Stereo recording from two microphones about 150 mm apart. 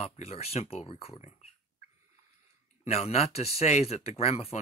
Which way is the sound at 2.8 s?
45° left (ahead or behind).